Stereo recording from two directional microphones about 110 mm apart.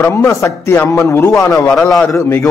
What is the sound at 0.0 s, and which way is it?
A man's voice, 25° left (ahead or behind).